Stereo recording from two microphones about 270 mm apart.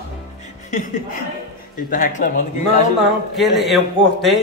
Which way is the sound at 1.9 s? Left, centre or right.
Left.